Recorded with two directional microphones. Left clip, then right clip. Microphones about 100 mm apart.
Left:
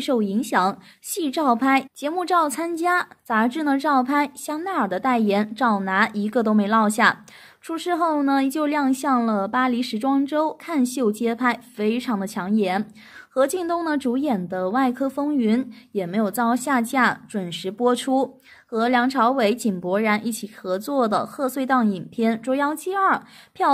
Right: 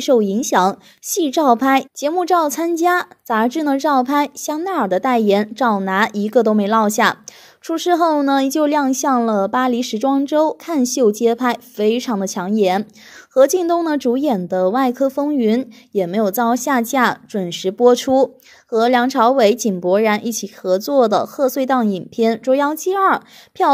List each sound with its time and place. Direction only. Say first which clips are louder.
0.0 s a woman's voice: right 8 dB; 35° right (ahead or behind)